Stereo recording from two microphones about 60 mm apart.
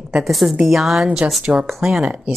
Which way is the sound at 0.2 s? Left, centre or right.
Centre.